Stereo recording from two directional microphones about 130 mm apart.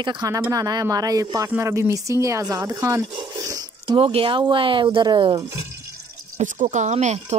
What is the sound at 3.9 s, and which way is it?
Speech, 45° right (ahead or behind).